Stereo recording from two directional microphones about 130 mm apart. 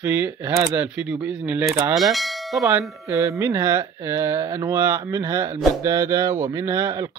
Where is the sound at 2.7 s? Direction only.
20° right (ahead or behind).